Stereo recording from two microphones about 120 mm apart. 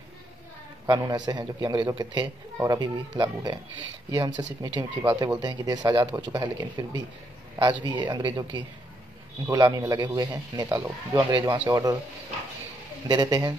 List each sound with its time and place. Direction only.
0.8 s speech: 35° right (ahead or behind)
9.5 s speech: 30° right (ahead or behind)
13.1 s speech: 35° right (ahead or behind)